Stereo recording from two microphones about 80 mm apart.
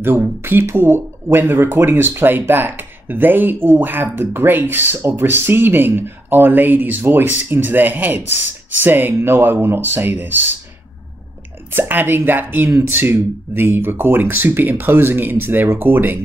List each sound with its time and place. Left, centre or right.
0.0 s speech: right
11.7 s speech: right